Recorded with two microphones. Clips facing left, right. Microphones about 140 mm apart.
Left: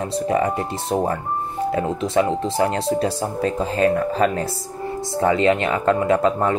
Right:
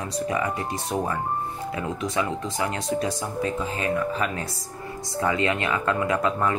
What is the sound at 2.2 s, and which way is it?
Speech, 30° left (ahead or behind).